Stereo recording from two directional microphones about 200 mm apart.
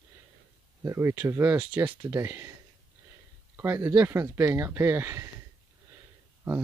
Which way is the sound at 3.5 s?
10° right (ahead or behind).